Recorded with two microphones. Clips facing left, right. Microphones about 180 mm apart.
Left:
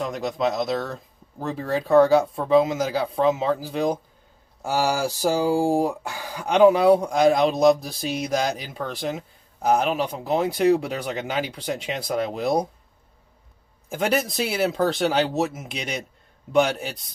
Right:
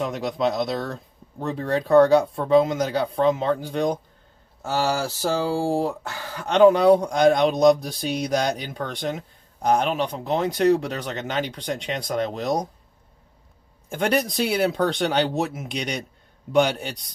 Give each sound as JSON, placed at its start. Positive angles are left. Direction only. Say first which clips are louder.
{"t": 0.0, "sound": "speech", "louder": "right 1 dB", "side_deg": 0}
{"t": 13.8, "sound": "speech", "louder": "right 1 dB", "side_deg": 5}